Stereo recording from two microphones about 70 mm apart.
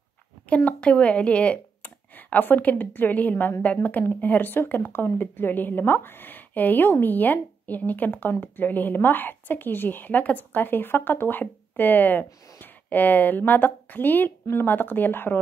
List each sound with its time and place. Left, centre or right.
0.7 s speech: centre